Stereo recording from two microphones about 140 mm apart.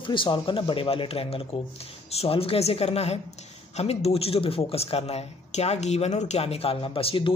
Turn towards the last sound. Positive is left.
turn(degrees=40)  # may be behind; listen again after turning